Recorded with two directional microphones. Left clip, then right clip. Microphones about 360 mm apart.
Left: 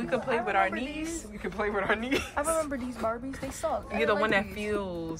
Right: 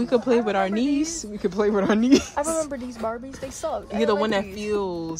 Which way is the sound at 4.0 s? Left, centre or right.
Centre.